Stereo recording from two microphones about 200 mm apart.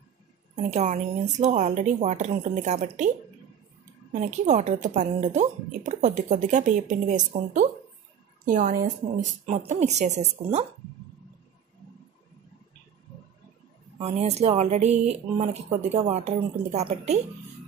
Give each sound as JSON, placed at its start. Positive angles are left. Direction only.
{"t": 0.6, "sound": "speech", "side_deg": -35}
{"t": 4.1, "sound": "speech", "side_deg": -35}
{"t": 13.9, "sound": "speech", "side_deg": -30}